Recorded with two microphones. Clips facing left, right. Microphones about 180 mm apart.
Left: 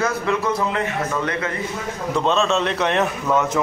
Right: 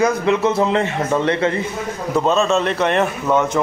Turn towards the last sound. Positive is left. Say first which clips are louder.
# right 3 dB
turn(degrees=0)  # may be behind; listen again after turning